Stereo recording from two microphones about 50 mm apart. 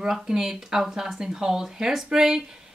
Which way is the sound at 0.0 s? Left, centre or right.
Centre.